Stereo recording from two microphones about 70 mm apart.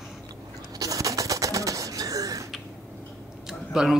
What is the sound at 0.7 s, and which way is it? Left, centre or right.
Pigeon, right.